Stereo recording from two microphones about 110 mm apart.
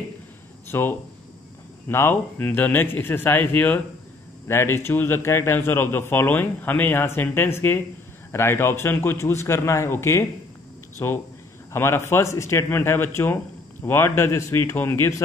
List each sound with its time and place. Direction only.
0.7 s speech: 20° left (ahead or behind)